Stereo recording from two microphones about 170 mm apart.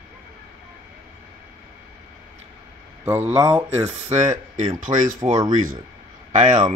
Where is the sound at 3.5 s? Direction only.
40° right (ahead or behind).